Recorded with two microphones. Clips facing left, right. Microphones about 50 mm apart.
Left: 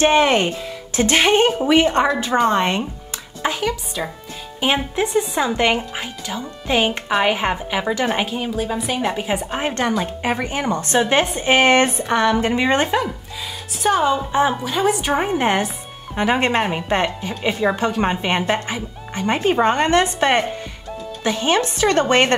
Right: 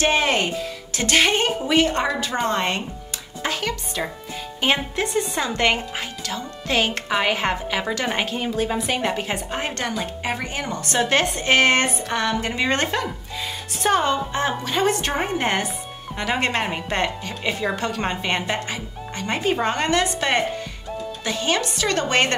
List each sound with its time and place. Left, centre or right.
0.0 s speech: left
3.4 s music: centre
4.6 s a woman's voice: centre
9.8 s speech: left
13.8 s speech: centre; by 22.3 s left